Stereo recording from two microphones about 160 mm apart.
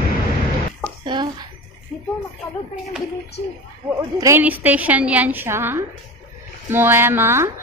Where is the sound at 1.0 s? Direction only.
30° right (ahead or behind).